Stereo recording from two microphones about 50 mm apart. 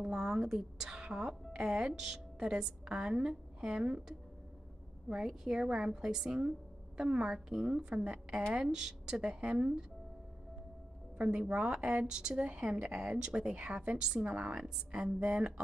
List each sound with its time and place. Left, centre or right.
0.0 s a woman's voice: centre
5.1 s a woman's voice: centre
11.1 s a woman's voice: right